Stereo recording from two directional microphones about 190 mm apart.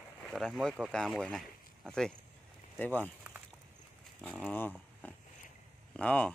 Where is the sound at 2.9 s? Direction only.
10° right (ahead or behind).